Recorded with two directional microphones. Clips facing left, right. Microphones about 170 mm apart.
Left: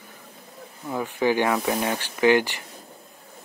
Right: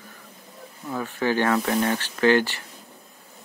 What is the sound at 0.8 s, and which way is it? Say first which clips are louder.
Speech: left 2 dB; 15° left (ahead or behind).